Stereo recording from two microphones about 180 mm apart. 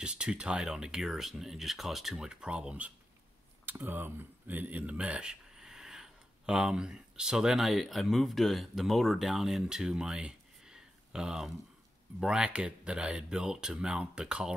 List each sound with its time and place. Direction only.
0.0 s speech: 5° right (ahead or behind)